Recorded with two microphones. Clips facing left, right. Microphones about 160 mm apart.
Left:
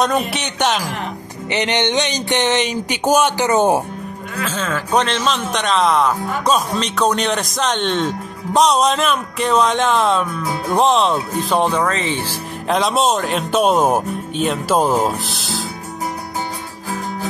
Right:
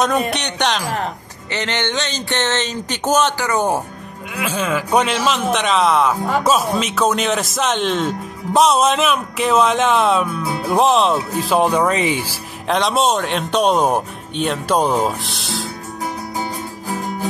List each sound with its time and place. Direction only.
0.0 s speech: centre (ahead or behind)
1.5 s speech: 20° left (ahead or behind)
3.4 s speech: 20° left (ahead or behind)
4.4 s speech: 10° right (ahead or behind)
12.6 s speech: centre (ahead or behind)